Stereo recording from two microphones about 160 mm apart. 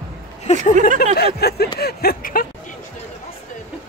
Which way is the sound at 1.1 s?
80° left.